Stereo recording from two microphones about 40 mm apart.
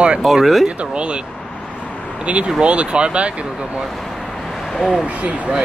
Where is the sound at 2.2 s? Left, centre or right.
Right.